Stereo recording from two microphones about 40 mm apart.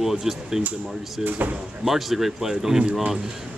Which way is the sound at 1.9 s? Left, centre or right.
Centre.